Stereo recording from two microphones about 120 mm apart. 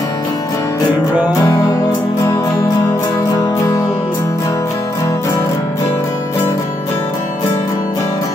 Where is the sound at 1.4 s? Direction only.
30° left (ahead or behind).